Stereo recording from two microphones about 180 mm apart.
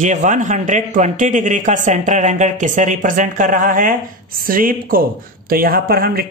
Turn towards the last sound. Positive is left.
turn(degrees=-55)  # may be behind; listen again after turning